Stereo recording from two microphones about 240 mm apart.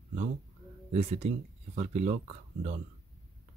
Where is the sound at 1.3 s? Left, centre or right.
Right.